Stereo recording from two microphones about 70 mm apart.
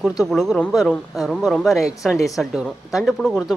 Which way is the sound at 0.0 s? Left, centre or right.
Centre.